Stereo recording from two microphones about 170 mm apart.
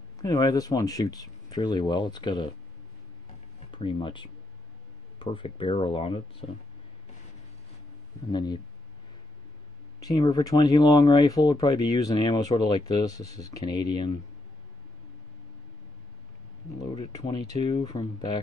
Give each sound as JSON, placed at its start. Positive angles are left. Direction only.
{"t": 0.2, "sound": "speech", "side_deg": 20}
{"t": 3.5, "sound": "speech", "side_deg": 30}
{"t": 8.3, "sound": "speech", "side_deg": 25}
{"t": 9.9, "sound": "speech", "side_deg": 20}
{"t": 16.9, "sound": "speech", "side_deg": 25}